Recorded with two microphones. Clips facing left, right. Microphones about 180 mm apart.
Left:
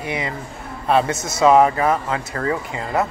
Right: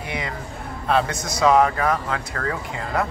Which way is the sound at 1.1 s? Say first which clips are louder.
Left 3 dB; 25° left (ahead or behind).